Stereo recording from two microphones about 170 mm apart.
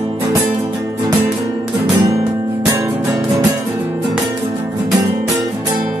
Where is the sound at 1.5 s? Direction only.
25° right (ahead or behind).